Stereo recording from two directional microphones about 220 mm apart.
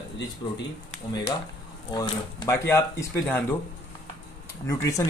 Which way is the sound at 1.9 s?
15° left (ahead or behind).